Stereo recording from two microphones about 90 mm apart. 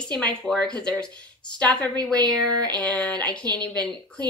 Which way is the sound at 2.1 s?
15° left (ahead or behind).